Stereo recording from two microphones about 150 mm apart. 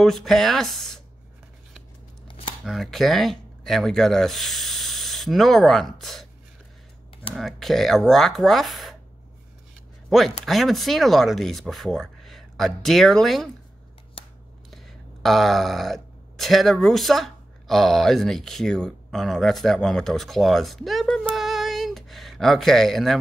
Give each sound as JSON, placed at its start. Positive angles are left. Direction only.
{"t": 0.0, "sound": "speech", "side_deg": 0}
{"t": 2.2, "sound": "chopping", "side_deg": 35}
{"t": 2.6, "sound": "speech", "side_deg": 0}
{"t": 7.3, "sound": "speech", "side_deg": 0}
{"t": 10.0, "sound": "speech", "side_deg": 0}
{"t": 14.2, "sound": "scissors", "side_deg": 35}
{"t": 14.7, "sound": "speech", "side_deg": 0}